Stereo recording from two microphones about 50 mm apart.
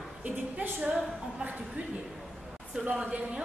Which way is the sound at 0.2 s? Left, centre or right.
Right.